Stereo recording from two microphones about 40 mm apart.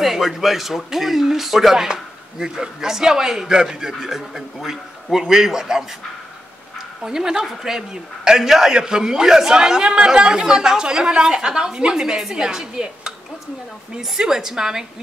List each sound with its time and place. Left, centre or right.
0.0 s a man's voice: centre
7.0 s a man's voice: centre